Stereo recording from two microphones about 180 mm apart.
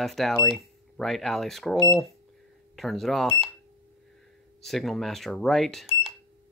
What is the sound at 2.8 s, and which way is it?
Speech, centre (ahead or behind).